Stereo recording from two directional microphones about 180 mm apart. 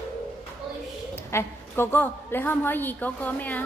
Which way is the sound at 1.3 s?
15° left (ahead or behind).